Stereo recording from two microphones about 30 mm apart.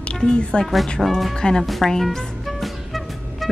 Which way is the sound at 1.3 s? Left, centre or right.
Left.